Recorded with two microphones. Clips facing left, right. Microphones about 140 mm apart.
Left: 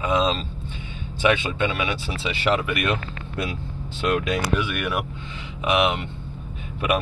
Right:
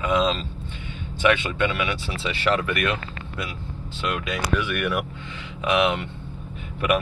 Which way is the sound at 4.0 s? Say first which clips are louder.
Left 5 dB; 50° left (ahead or behind).